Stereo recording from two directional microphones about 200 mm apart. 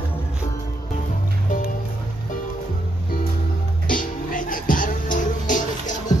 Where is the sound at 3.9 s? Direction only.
40° left (ahead or behind).